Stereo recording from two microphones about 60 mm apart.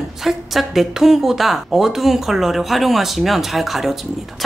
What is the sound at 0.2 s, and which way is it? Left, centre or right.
Speech, centre.